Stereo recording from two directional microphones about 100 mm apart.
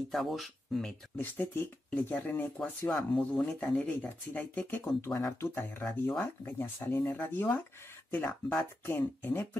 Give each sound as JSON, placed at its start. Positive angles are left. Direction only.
{"t": 0.1, "sound": "speech", "side_deg": 0}
{"t": 1.1, "sound": "speech", "side_deg": 20}
{"t": 2.9, "sound": "speech", "side_deg": 5}